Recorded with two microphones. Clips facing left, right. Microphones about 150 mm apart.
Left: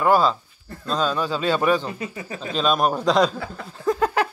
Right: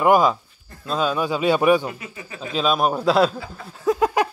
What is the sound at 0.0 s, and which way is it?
A man's voice, 15° right (ahead or behind).